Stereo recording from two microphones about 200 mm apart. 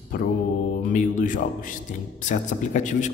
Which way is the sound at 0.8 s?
40° left (ahead or behind).